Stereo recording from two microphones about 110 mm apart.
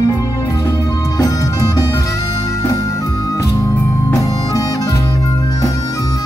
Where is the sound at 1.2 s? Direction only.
35° left (ahead or behind).